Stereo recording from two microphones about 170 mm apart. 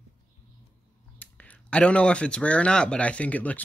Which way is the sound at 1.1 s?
10° left (ahead or behind).